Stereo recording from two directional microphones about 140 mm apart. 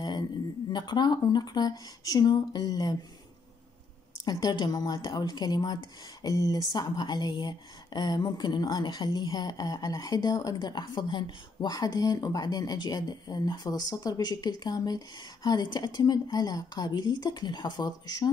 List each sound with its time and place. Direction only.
0.7 s speech: 30° left (ahead or behind)
4.2 s speech: 30° left (ahead or behind)